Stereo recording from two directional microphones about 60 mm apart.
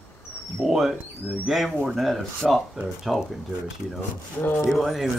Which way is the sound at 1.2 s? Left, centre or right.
Right.